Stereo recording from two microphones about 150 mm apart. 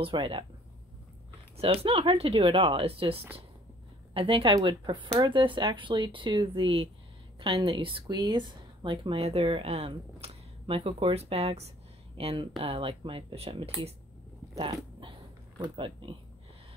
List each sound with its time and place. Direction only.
0.0 s speech: 35° right (ahead or behind)
1.6 s speech: 40° right (ahead or behind)
14.7 s dog: 35° right (ahead or behind)
15.6 s speech: 35° right (ahead or behind)